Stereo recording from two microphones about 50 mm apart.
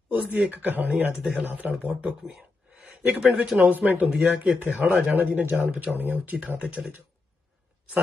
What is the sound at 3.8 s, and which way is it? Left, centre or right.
Speech, centre.